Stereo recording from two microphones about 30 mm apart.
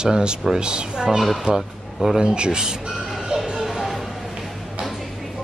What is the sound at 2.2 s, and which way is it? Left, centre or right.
Speech, right.